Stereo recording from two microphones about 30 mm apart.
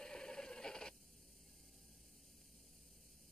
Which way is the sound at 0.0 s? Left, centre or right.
Left.